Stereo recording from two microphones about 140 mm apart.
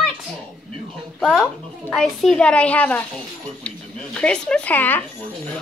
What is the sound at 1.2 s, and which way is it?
A woman's voice, 5° right (ahead or behind).